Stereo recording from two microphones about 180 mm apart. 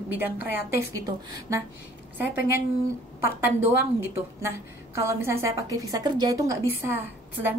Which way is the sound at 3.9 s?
15° right (ahead or behind).